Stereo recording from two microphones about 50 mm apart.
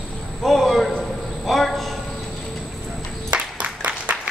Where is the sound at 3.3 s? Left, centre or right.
Right.